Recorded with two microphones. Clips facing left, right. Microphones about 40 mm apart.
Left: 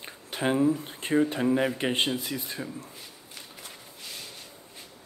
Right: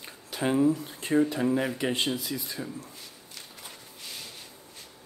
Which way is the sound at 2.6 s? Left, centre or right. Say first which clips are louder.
Even; centre.